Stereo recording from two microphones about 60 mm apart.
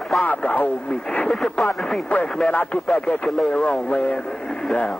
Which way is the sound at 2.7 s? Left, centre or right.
Centre.